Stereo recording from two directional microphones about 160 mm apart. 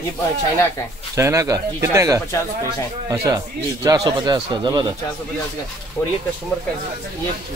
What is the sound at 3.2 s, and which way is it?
Speech, 20° right (ahead or behind).